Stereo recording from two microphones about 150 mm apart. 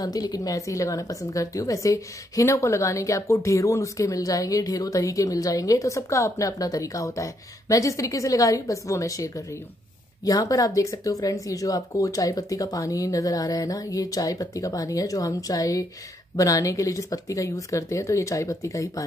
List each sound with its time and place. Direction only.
0.0 s a woman's voice: 25° left (ahead or behind)